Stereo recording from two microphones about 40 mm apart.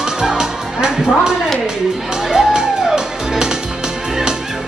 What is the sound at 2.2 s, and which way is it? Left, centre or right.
Music, centre.